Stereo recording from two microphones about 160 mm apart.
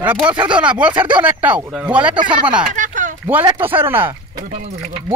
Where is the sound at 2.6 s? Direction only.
55° right (ahead or behind).